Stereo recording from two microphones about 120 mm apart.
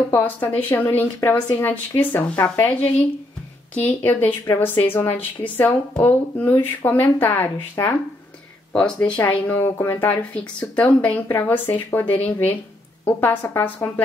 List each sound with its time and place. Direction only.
0.1 s a woman's voice: 15° left (ahead or behind)